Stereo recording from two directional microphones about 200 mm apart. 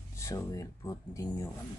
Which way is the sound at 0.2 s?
15° left (ahead or behind).